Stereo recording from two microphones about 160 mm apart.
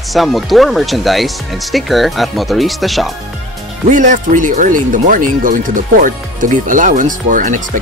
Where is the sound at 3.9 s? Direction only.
50° right (ahead or behind).